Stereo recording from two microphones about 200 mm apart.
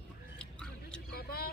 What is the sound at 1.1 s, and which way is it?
Vehicle, 50° left (ahead or behind).